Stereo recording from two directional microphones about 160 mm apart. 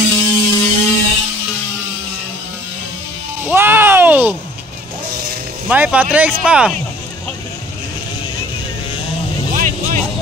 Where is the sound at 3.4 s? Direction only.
15° right (ahead or behind).